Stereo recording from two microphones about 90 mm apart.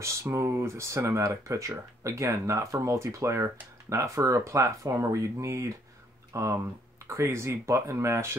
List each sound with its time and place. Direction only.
0.0 s speech: 30° right (ahead or behind)